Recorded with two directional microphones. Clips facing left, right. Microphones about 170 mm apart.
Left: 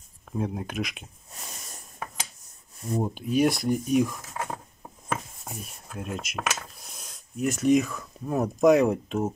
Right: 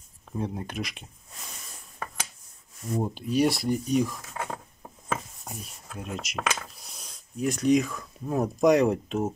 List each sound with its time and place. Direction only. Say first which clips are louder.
0.4 s speech: left 2 dB; centre (ahead or behind)
3.0 s speech: left 1 dB; centre (ahead or behind)
5.4 s speech: left 1 dB; centre (ahead or behind)